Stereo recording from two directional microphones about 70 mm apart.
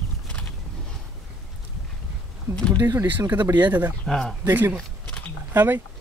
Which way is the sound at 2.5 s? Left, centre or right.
Right.